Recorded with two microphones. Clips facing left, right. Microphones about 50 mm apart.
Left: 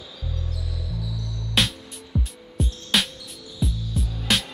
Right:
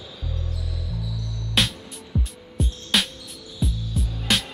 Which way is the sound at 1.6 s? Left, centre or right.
Centre.